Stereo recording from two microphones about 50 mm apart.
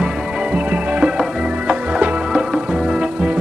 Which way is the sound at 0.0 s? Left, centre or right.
Right.